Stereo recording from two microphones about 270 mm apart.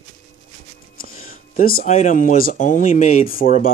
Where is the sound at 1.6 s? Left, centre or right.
Left.